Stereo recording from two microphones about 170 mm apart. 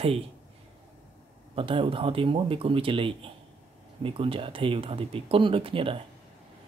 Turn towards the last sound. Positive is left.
turn(degrees=-30)  # may be behind; listen again after turning